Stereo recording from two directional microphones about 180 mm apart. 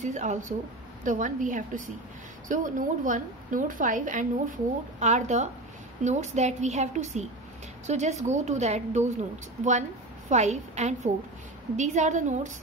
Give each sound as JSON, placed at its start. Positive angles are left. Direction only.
{"t": 0.0, "sound": "a woman's voice", "side_deg": -40}
{"t": 10.3, "sound": "a woman's voice", "side_deg": -40}